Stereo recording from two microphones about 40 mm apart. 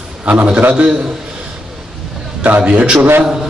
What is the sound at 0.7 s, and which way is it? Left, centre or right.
Speech, right.